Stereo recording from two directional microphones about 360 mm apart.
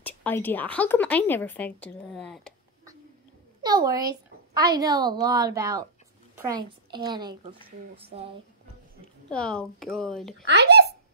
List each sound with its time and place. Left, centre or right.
0.0 s speech: centre
3.6 s a woman's voice: centre
6.3 s a sound: centre
7.1 s a woman's voice: centre
9.3 s speech: centre
10.4 s speech: right